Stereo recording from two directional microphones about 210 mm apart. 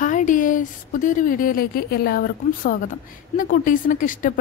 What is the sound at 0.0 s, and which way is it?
A woman's voice, 40° left (ahead or behind).